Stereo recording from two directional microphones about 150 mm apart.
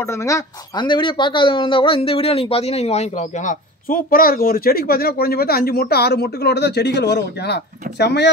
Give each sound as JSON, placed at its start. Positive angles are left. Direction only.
{"t": 0.0, "sound": "speech", "side_deg": 20}